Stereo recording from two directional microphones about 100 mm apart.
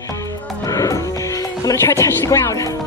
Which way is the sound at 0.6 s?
35° left (ahead or behind).